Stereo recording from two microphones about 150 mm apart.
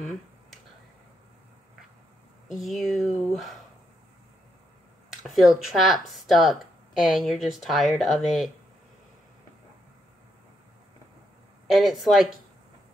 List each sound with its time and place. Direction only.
0.0 s finger snapping: centre (ahead or behind)
2.4 s speech: centre (ahead or behind)
5.2 s speech: centre (ahead or behind)
11.6 s speech: centre (ahead or behind)